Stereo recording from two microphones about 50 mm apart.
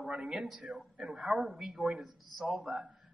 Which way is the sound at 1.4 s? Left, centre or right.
Centre.